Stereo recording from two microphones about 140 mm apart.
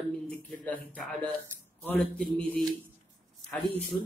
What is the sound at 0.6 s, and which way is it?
A man's voice, 5° left (ahead or behind).